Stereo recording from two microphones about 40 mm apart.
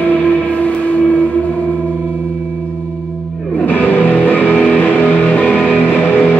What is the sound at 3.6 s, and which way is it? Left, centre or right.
Music, left.